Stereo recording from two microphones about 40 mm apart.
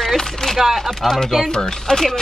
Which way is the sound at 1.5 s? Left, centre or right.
Centre.